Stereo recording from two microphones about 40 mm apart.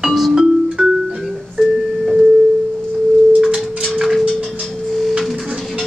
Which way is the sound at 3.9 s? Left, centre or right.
Centre.